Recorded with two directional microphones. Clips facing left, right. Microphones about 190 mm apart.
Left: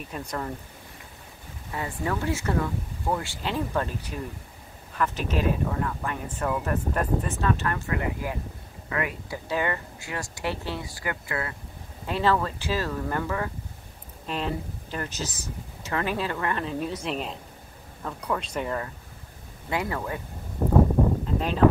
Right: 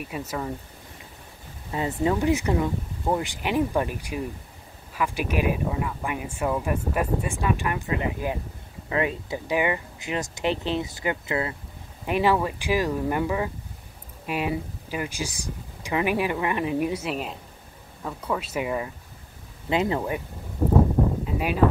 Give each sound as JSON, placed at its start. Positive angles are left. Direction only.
{"t": 0.1, "sound": "speech", "side_deg": -5}
{"t": 1.7, "sound": "speech", "side_deg": -20}
{"t": 19.7, "sound": "speech", "side_deg": -20}